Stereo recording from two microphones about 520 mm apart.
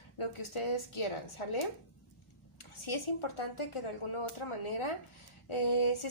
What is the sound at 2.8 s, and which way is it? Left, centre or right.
A woman's voice, left.